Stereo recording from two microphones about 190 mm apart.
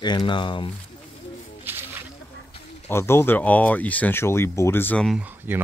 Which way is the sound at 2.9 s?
15° left (ahead or behind).